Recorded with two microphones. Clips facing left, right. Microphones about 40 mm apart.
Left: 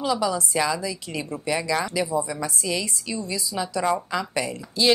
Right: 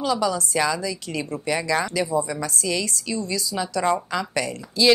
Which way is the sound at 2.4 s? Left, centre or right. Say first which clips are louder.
Right 1 dB; centre.